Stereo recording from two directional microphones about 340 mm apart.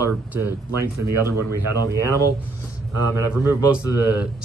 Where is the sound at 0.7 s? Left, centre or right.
Right.